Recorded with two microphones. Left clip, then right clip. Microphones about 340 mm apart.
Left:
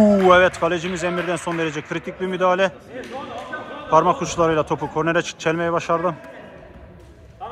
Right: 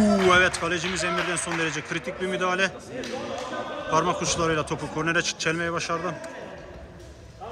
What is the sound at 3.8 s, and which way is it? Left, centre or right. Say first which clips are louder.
A man's voice: left 8 dB; centre.